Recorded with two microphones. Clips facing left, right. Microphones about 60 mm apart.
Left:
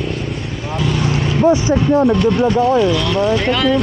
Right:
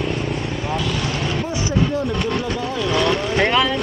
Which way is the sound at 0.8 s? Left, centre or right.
Centre.